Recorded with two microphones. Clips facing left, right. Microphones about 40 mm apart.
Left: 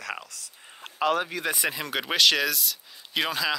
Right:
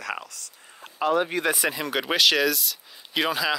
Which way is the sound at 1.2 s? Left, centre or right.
Centre.